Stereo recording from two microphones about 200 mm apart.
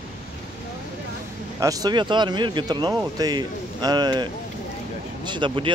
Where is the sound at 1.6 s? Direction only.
20° right (ahead or behind).